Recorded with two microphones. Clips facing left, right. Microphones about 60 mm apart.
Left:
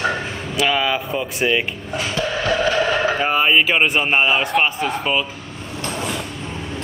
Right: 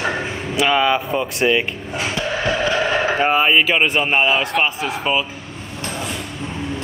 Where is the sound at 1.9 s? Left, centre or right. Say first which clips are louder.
Even; right.